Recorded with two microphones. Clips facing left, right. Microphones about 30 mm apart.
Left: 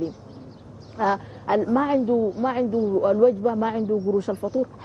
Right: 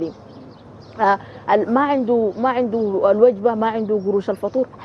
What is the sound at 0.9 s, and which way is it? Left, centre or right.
A woman's voice, right.